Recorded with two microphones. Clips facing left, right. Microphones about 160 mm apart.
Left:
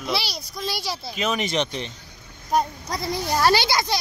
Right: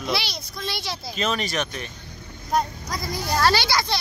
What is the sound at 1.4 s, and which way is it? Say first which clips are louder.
Speech: left 3 dB; 20° left (ahead or behind).